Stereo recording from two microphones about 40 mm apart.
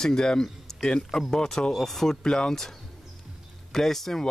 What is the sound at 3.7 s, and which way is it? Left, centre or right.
Speech, centre.